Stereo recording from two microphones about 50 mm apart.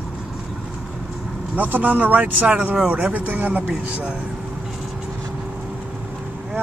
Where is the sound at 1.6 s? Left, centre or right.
Right.